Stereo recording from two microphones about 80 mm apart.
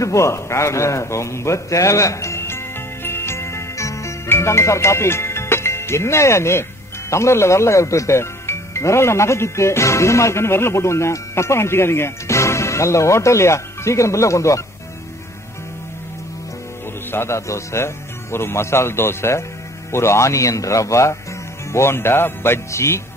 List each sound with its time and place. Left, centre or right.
0.0 s a sound: left
7.1 s speech: left
17.1 s speech: left